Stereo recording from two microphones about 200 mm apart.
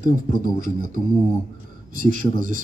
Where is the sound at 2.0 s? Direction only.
40° right (ahead or behind).